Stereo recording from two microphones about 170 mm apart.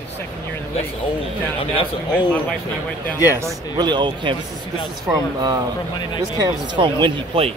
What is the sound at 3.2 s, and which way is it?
Speech, 15° right (ahead or behind).